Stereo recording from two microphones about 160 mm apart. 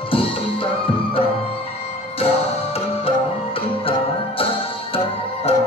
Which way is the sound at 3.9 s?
35° left (ahead or behind).